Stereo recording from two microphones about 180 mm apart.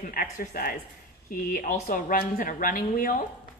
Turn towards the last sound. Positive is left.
turn(degrees=50)  # may be behind; listen again after turning